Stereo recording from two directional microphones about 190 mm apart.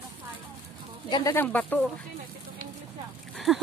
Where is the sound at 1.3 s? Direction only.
10° left (ahead or behind).